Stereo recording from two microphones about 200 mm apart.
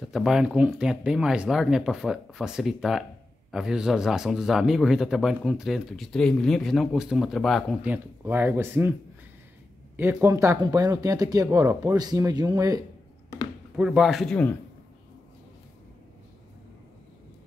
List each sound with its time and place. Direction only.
0.1 s speech: centre (ahead or behind)
9.9 s speech: 10° right (ahead or behind)
13.7 s speech: 5° right (ahead or behind)